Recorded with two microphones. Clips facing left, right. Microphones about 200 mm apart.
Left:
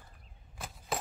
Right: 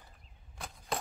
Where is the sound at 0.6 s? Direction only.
5° left (ahead or behind).